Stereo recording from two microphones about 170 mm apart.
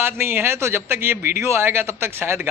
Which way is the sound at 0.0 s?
15° right (ahead or behind).